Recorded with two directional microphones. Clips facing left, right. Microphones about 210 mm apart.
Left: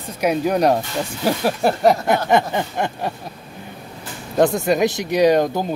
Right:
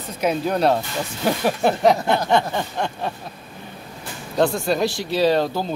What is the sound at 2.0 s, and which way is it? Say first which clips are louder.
Speech: left 2 dB; 15° left (ahead or behind).